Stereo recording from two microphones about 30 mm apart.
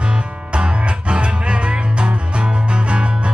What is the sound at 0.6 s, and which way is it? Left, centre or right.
Music, right.